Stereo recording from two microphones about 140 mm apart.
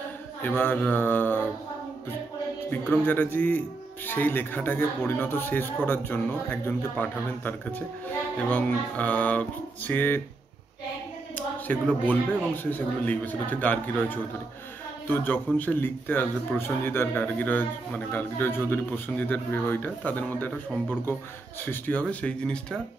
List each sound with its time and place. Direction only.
0.4 s a man's voice: 15° left (ahead or behind)
2.7 s a man's voice: 15° left (ahead or behind)
11.3 s a sound: 10° left (ahead or behind)
12.6 s a man's voice: 10° left (ahead or behind)
21.6 s a man's voice: 10° left (ahead or behind)